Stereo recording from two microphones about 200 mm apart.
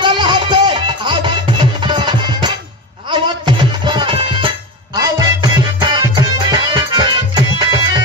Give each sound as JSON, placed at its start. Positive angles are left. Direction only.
{"t": 0.0, "sound": "music", "side_deg": -25}